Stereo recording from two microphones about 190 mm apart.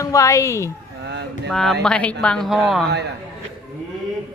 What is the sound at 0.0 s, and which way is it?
Speech, 15° left (ahead or behind).